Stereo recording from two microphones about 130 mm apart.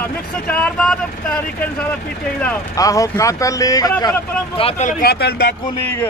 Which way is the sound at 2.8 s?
25° left (ahead or behind).